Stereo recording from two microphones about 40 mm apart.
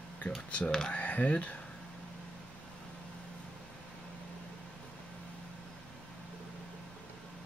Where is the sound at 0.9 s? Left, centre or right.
Left.